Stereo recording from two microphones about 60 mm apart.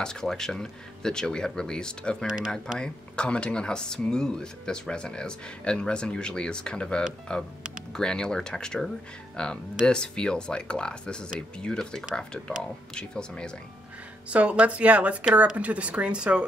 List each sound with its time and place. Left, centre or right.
0.0 s speech: centre
14.3 s speech: right